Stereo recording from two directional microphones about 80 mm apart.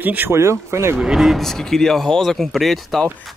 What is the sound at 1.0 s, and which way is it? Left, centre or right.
A man's voice, centre.